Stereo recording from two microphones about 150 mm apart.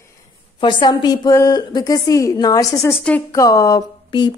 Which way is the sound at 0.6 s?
30° left (ahead or behind).